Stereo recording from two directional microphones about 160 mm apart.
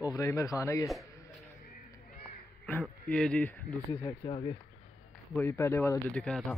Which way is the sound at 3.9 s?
25° left (ahead or behind).